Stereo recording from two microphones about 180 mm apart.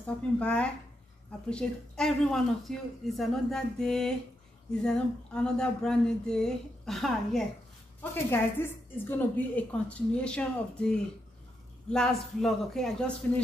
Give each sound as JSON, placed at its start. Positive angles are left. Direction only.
{"t": 0.0, "sound": "speech", "side_deg": 5}
{"t": 8.0, "sound": "a woman's voice", "side_deg": 10}